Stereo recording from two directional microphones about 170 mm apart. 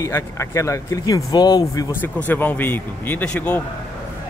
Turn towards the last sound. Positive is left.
turn(degrees=5)  # may be behind; listen again after turning